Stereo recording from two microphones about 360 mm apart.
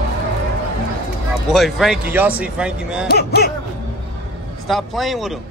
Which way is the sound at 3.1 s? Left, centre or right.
Left.